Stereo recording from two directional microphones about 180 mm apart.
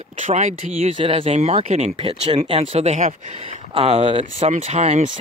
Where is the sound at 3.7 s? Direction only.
35° right (ahead or behind).